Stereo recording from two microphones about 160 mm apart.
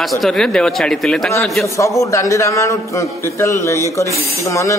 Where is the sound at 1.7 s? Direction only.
20° left (ahead or behind).